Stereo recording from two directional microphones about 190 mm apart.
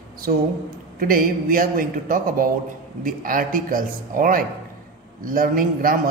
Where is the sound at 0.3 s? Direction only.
50° right (ahead or behind).